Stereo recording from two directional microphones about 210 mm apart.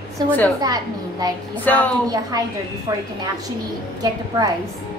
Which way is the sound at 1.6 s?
5° left (ahead or behind).